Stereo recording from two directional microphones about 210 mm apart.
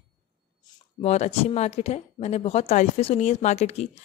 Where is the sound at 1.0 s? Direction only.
30° left (ahead or behind).